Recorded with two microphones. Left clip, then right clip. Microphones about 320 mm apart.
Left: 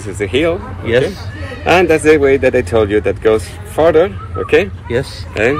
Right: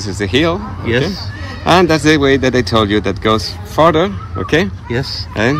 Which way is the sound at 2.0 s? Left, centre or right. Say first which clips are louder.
Left 2 dB; right.